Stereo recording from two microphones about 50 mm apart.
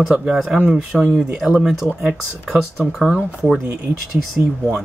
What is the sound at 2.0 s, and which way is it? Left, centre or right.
Speech, right.